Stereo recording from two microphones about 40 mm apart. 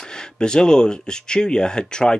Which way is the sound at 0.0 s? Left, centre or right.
Centre.